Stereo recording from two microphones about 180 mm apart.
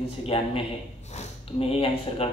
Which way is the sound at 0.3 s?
30° left (ahead or behind).